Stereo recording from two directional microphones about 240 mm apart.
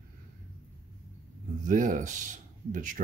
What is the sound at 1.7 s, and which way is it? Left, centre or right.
Speech, right.